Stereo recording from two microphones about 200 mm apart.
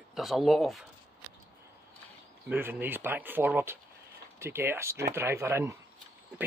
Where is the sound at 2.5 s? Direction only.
10° right (ahead or behind).